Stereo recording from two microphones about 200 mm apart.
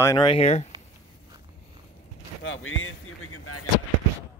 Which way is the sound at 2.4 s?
75° left (ahead or behind).